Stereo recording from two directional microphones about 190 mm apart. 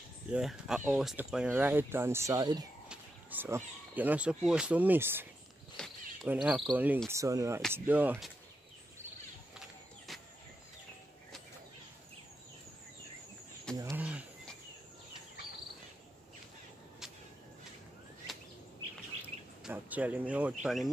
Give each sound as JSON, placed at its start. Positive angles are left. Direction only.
{"t": 0.3, "sound": "speech", "side_deg": -5}
{"t": 2.9, "sound": "a sound", "side_deg": -10}
{"t": 4.4, "sound": "speech", "side_deg": -5}
{"t": 5.8, "sound": "speech", "side_deg": 5}
{"t": 6.2, "sound": "speech", "side_deg": -5}
{"t": 13.7, "sound": "a sound", "side_deg": -10}
{"t": 19.6, "sound": "speech", "side_deg": -10}